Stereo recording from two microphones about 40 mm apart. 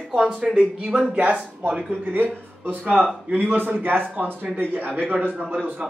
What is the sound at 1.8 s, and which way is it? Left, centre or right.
Speech, right.